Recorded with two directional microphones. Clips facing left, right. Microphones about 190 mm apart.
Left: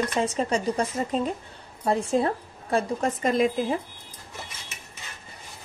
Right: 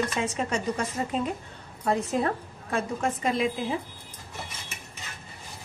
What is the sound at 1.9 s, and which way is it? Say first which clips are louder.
A woman's voice: left 2 dB; 30° left (ahead or behind).